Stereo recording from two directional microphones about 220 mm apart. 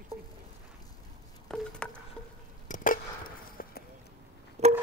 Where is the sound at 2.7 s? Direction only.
35° left (ahead or behind).